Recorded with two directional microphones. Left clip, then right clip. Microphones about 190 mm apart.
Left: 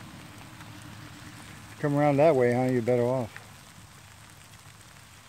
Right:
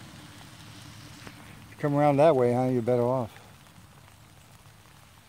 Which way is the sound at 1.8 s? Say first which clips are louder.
Right 1 dB; 20° right (ahead or behind).